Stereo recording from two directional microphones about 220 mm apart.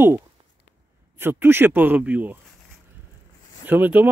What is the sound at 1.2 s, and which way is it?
Speech, 10° right (ahead or behind).